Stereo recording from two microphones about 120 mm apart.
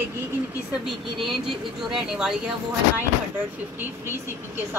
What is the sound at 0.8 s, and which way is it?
Speech, centre (ahead or behind).